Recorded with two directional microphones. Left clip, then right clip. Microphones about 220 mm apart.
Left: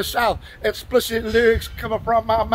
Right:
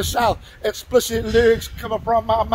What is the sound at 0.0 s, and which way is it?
Speech, 20° right (ahead or behind).